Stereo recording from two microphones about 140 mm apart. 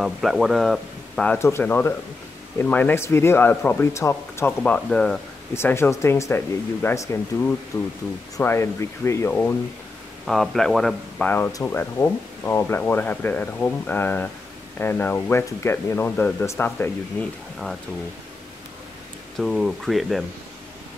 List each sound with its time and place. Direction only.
0.0 s speech: centre (ahead or behind)
1.4 s speech: 15° left (ahead or behind)
4.5 s speech: 10° left (ahead or behind)
5.5 s speech: 15° left (ahead or behind)
10.2 s speech: centre (ahead or behind)
19.3 s speech: centre (ahead or behind)